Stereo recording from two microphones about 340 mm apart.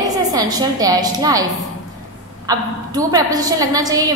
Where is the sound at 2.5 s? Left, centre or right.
Centre.